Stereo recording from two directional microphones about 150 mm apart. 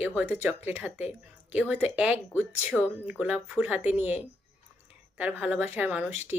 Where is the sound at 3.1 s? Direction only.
10° right (ahead or behind).